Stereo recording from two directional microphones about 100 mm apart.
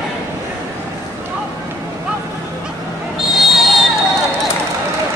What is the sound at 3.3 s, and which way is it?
Music, centre (ahead or behind).